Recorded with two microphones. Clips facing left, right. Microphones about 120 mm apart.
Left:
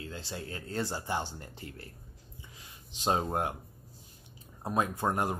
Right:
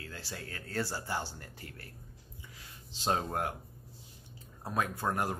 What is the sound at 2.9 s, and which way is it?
Speech, 20° left (ahead or behind).